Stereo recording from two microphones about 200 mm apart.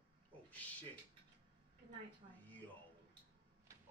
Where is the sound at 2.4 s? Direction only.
10° left (ahead or behind).